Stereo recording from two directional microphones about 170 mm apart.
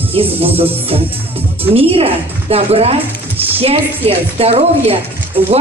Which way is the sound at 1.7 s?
35° right (ahead or behind).